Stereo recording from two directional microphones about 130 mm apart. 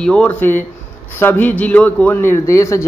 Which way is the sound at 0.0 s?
10° left (ahead or behind).